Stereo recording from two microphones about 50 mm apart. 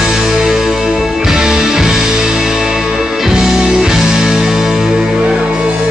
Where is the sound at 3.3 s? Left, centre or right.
Centre.